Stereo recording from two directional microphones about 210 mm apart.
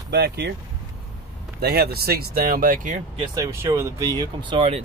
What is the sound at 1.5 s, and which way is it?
Speech, 50° right (ahead or behind).